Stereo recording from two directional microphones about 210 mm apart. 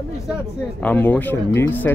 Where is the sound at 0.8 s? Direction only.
10° left (ahead or behind).